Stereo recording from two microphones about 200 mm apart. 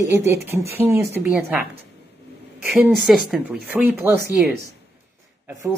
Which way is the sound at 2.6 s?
Centre (ahead or behind).